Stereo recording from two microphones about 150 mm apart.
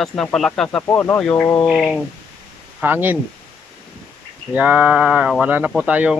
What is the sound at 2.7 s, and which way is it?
Speech, 15° right (ahead or behind).